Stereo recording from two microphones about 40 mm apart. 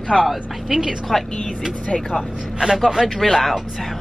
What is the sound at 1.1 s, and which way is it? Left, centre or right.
Speech, centre.